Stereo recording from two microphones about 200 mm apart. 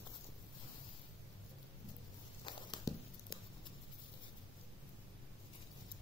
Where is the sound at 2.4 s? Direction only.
20° left (ahead or behind).